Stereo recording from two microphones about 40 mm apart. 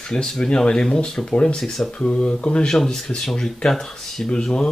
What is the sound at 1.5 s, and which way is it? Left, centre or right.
Speech, centre.